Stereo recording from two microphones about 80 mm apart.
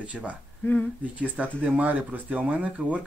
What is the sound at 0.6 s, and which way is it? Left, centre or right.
Speech, left.